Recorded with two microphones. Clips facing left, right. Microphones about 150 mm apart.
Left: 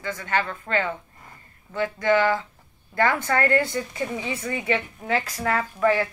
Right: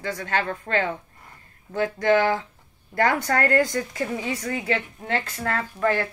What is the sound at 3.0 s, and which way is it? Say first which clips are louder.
A woman's voice: even; 40° right (ahead or behind).